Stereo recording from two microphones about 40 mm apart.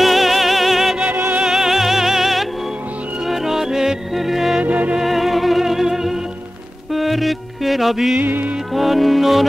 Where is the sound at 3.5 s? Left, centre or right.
Centre.